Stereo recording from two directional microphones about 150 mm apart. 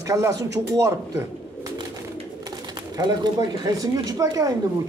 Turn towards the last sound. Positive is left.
turn(degrees=-25)  # may be behind; listen again after turning